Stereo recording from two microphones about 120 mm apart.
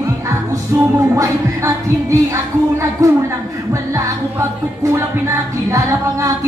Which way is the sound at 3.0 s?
25° right (ahead or behind).